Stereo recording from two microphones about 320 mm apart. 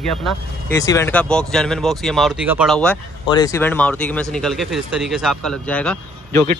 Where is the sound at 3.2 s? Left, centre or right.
Centre.